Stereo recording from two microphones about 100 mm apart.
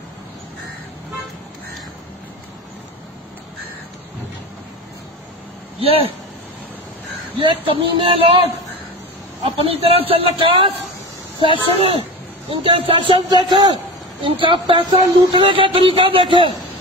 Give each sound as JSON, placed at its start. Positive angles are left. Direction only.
{"t": 5.8, "sound": "a sound", "side_deg": -70}
{"t": 7.3, "sound": "speech", "side_deg": -55}
{"t": 9.6, "sound": "speech", "side_deg": -70}
{"t": 13.3, "sound": "a man's voice", "side_deg": -50}